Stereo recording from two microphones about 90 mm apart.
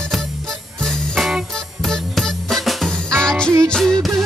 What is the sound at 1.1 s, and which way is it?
Music, 5° right (ahead or behind).